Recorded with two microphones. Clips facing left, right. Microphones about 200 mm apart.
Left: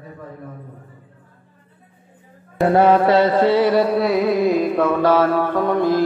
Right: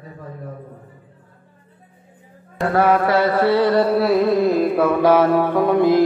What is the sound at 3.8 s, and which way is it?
Music, centre (ahead or behind).